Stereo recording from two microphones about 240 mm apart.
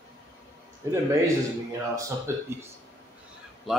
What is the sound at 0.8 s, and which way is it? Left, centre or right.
Speech, centre.